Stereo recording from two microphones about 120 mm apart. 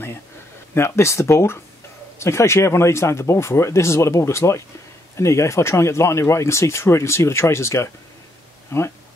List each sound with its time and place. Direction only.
0.7 s speech: 20° left (ahead or behind)